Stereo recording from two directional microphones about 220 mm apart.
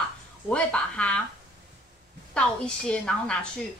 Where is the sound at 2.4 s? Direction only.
5° left (ahead or behind).